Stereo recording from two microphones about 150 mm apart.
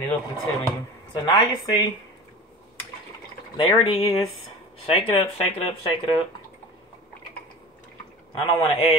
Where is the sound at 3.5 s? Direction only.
35° left (ahead or behind).